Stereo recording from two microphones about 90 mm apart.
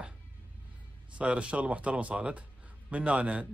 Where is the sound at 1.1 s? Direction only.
15° right (ahead or behind).